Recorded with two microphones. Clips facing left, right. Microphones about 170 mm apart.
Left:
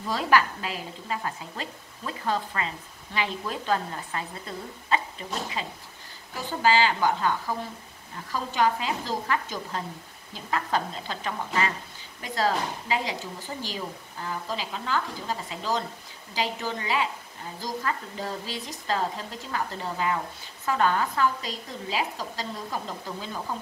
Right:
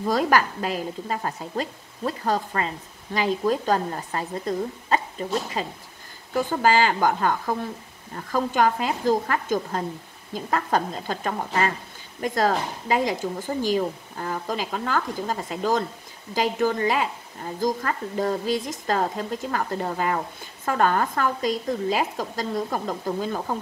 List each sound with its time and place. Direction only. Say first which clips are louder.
0.0 s a woman's voice: right 3 dB; 45° right (ahead or behind)